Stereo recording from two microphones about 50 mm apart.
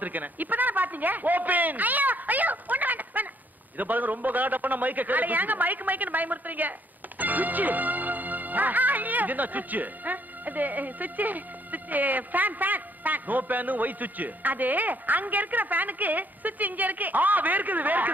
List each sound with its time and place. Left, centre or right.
0.0 s a man's voice: right